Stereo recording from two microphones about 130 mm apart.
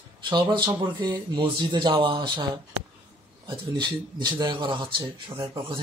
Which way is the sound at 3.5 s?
35° right (ahead or behind).